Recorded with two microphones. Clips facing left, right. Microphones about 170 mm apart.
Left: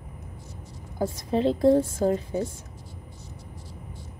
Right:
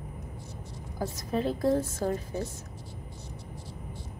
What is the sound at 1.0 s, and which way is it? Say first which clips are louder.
A woman's voice: left 6 dB; 25° left (ahead or behind).